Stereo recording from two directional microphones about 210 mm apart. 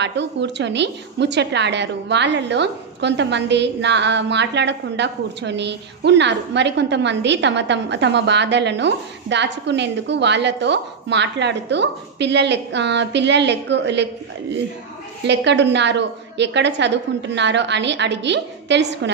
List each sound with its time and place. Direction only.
0.0 s a woman's voice: 55° right (ahead or behind)
15.2 s a woman's voice: 55° right (ahead or behind)